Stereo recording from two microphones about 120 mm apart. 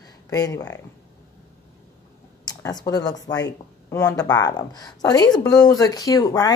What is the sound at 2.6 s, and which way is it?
A woman's voice, 35° left (ahead or behind).